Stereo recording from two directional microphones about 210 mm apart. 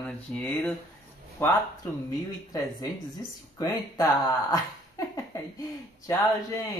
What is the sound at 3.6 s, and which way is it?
Speech, 15° left (ahead or behind).